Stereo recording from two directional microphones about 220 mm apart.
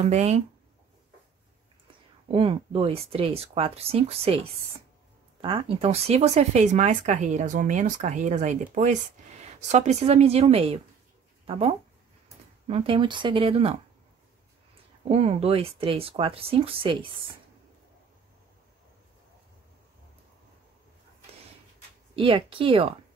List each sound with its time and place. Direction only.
0.1 s speech: 30° right (ahead or behind)
2.3 s speech: 25° right (ahead or behind)
15.0 s speech: 25° right (ahead or behind)
22.1 s speech: 25° right (ahead or behind)